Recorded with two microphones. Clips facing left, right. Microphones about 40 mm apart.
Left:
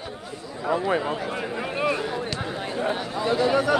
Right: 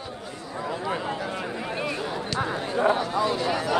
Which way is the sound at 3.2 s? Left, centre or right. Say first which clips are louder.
Left 3 dB; left.